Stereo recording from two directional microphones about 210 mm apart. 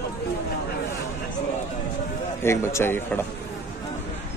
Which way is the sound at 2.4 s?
10° left (ahead or behind).